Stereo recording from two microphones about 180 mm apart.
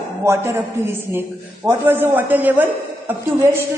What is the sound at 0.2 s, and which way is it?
A man's voice, 15° right (ahead or behind).